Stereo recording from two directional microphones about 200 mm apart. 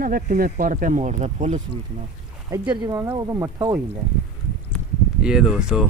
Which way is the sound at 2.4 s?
15° right (ahead or behind).